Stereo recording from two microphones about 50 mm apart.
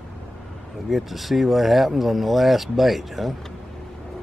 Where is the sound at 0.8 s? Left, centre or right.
Centre.